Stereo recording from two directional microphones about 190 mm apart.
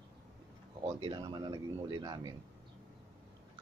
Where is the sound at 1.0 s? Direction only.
25° right (ahead or behind).